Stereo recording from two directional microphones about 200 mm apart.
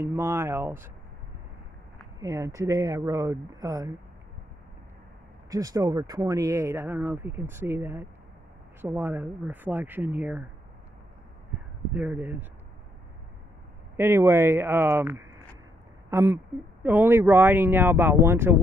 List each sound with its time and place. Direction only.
0.0 s speech: 15° right (ahead or behind)
2.1 s speech: 15° right (ahead or behind)
5.5 s speech: 15° right (ahead or behind)
11.9 s speech: 10° right (ahead or behind)
13.9 s speech: 10° right (ahead or behind)